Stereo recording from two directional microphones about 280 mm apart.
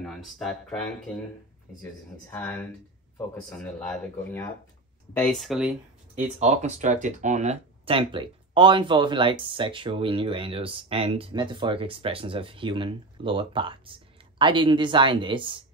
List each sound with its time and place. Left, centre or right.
0.0 s speech: centre
6.1 s speech: right